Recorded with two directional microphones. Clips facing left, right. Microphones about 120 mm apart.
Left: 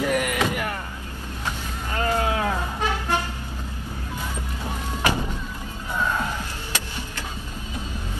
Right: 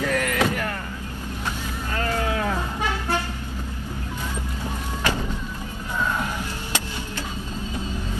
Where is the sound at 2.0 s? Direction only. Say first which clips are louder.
Left 2 dB; 20° left (ahead or behind).